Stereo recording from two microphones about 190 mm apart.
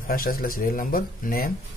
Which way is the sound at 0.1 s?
50° left (ahead or behind).